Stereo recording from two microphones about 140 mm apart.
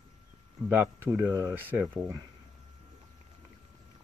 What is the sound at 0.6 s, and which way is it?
Speech, 15° right (ahead or behind).